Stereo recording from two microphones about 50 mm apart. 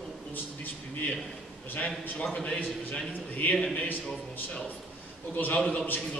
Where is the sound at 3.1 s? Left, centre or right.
Left.